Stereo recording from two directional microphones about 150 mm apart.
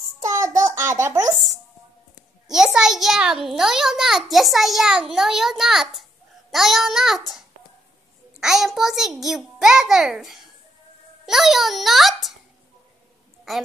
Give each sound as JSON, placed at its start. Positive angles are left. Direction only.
{"t": 0.2, "sound": "child singing", "side_deg": -20}
{"t": 1.0, "sound": "speech", "side_deg": -25}
{"t": 2.4, "sound": "a child's voice", "side_deg": -5}